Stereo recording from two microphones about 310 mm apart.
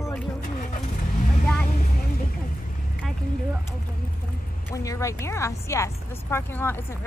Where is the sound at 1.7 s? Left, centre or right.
Left.